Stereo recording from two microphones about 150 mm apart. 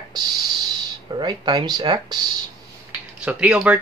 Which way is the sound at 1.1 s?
30° right (ahead or behind).